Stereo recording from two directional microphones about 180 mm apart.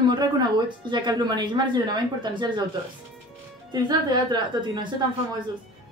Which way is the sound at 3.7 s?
25° right (ahead or behind).